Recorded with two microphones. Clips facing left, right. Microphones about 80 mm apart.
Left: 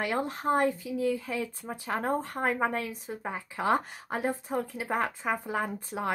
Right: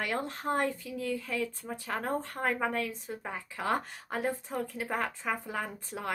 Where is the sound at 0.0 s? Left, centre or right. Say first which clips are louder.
Left 4 dB; centre.